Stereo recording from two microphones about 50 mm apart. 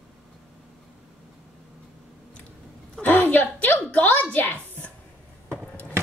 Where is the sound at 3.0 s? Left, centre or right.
Left.